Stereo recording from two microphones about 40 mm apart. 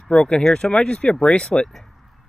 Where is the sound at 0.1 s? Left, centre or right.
Left.